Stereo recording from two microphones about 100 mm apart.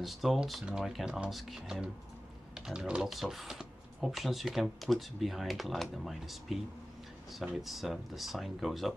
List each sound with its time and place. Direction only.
0.0 s speech: centre (ahead or behind)